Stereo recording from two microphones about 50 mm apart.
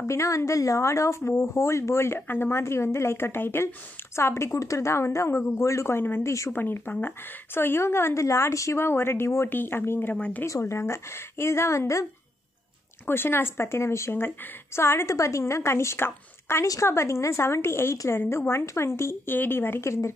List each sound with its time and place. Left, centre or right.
0.0 s speech: left
2.1 s speech: left
5.9 s speech: left
6.2 s speech: left
6.5 s speech: left
9.5 s speech: left
10.1 s speech: left
10.4 s speech: left
13.0 s speech: left
19.2 s speech: left
19.8 s speech: left